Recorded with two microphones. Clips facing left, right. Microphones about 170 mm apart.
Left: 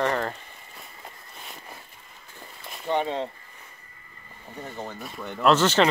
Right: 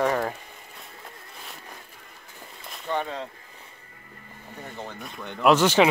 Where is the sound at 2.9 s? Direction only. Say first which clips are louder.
Left 3 dB; 25° left (ahead or behind).